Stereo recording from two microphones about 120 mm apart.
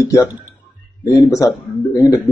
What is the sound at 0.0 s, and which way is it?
A man's voice, 25° left (ahead or behind).